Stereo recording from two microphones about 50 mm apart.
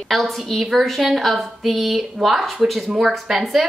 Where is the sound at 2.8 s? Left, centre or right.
Centre.